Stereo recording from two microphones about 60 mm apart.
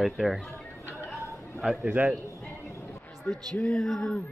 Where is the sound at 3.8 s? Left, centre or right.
Centre.